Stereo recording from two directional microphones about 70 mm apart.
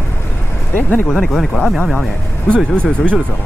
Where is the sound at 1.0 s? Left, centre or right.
Centre.